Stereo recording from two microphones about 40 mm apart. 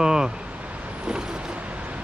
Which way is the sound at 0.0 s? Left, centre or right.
Centre.